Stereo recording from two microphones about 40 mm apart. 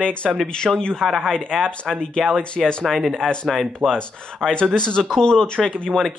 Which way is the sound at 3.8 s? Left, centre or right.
Centre.